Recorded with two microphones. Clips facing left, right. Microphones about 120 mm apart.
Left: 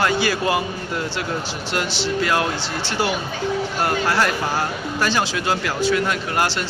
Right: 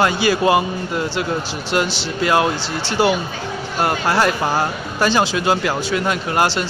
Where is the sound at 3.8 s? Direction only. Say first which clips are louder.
Right 4 dB; 20° right (ahead or behind).